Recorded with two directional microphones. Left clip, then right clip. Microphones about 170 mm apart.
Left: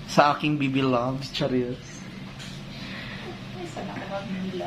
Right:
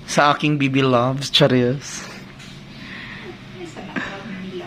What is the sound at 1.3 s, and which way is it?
Speech, 75° right (ahead or behind).